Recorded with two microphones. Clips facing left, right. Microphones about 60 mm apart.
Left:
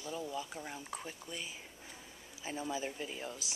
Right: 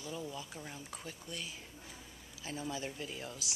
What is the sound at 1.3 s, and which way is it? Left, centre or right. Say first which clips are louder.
Speech: even; centre.